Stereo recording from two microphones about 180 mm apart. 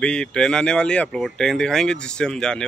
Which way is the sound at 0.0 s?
5° left (ahead or behind).